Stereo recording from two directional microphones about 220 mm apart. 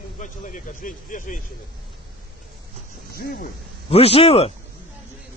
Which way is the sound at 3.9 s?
25° left (ahead or behind).